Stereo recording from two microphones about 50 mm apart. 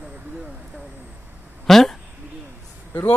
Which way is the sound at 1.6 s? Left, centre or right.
Centre.